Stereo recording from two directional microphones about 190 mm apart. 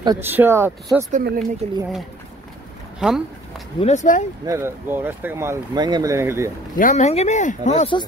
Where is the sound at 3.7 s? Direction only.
35° left (ahead or behind).